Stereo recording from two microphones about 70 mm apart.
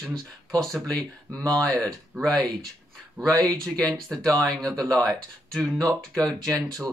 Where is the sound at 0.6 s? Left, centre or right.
Centre.